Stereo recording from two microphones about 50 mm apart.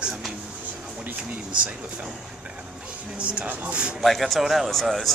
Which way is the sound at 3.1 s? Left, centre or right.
Right.